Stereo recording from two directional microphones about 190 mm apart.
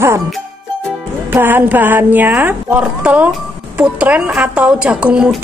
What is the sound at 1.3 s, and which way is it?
A woman's voice, 10° right (ahead or behind).